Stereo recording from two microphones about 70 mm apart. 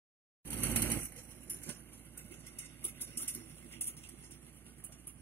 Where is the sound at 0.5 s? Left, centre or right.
Left.